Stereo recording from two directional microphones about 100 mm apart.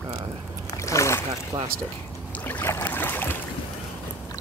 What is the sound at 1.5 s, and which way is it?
Speech, 50° right (ahead or behind).